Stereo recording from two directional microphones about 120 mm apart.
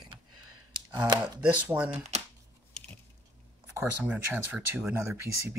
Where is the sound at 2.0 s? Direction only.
70° right (ahead or behind).